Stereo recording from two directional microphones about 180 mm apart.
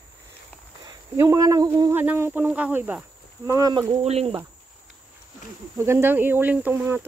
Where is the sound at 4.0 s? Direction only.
35° right (ahead or behind).